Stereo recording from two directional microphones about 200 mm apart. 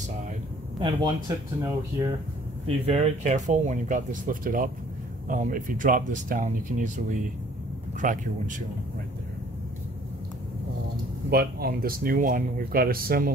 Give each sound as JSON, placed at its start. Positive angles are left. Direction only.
{"t": 0.8, "sound": "speech", "side_deg": -20}
{"t": 2.6, "sound": "speech", "side_deg": -30}
{"t": 11.2, "sound": "speech", "side_deg": -50}